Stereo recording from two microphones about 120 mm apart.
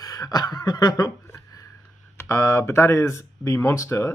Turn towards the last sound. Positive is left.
turn(degrees=25)  # may be behind; listen again after turning